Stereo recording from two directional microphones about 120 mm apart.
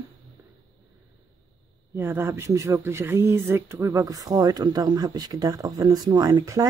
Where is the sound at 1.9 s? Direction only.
20° right (ahead or behind).